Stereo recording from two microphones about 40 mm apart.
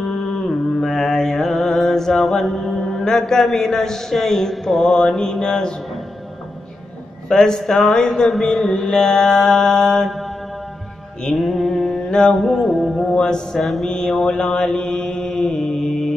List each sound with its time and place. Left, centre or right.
0.2 s mantra: centre
2.8 s a man's voice: centre
7.2 s a man's voice: centre
8.0 s a sound: centre
8.3 s a man's voice: centre
11.3 s mantra: centre
12.4 s mantra: centre
13.1 s a man's voice: centre
13.6 s mantra: centre
13.8 s a sound: left
14.2 s mantra: left